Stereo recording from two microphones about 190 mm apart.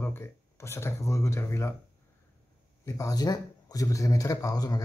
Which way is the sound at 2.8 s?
15° left (ahead or behind).